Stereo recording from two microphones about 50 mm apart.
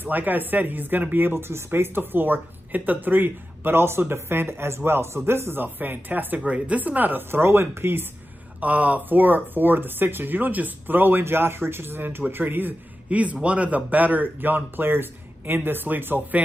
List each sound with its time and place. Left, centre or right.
0.0 s speech: right
7.2 s speech: right
8.5 s speech: right
13.1 s speech: right